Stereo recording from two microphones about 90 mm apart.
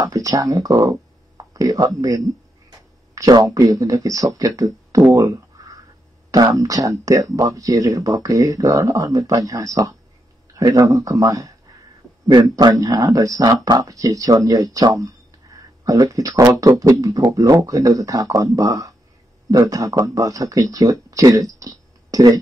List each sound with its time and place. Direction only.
0.0 s speech: 40° right (ahead or behind)
6.3 s speech: 40° right (ahead or behind)